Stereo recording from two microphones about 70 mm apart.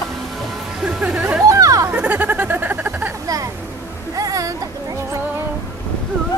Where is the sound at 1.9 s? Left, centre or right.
Centre.